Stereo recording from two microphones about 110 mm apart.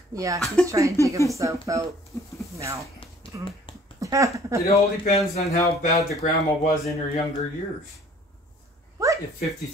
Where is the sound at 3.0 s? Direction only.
55° left (ahead or behind).